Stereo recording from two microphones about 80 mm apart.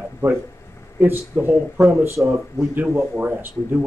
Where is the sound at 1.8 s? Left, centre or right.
Right.